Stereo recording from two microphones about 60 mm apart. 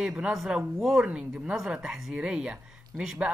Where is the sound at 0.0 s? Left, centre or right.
Centre.